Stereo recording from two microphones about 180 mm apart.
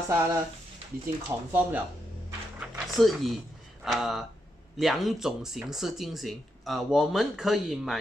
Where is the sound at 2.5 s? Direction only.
5° right (ahead or behind).